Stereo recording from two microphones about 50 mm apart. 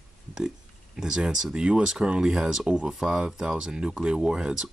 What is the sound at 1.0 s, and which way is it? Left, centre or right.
Speech, centre.